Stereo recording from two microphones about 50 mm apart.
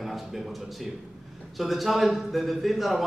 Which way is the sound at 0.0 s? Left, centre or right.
Centre.